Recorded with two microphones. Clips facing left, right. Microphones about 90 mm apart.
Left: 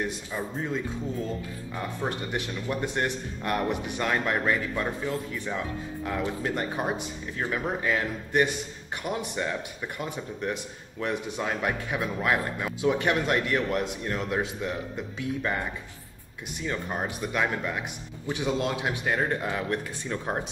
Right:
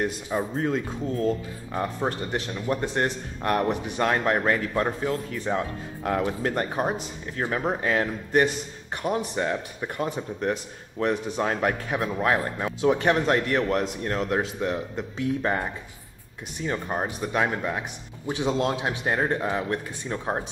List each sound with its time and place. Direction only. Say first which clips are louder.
0.0 s speech: right 5 dB; 50° right (ahead or behind)
2.0 s speech: right 3 dB; 35° right (ahead or behind)
16.6 s a man's voice: right 3 dB; 30° right (ahead or behind)